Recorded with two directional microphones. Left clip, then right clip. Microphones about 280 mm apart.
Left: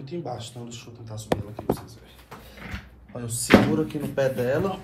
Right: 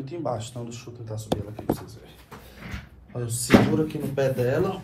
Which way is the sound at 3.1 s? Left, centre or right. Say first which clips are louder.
Left 1 dB; left.